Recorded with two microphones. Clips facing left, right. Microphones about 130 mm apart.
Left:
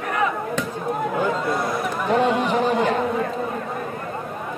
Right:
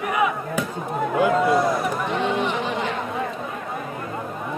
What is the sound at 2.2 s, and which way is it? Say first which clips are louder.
Chatter: left 4 dB; 40° left (ahead or behind).